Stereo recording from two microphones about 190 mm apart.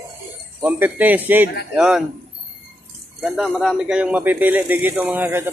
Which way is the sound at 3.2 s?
Centre (ahead or behind).